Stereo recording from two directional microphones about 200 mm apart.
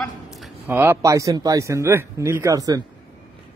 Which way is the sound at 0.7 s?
10° right (ahead or behind).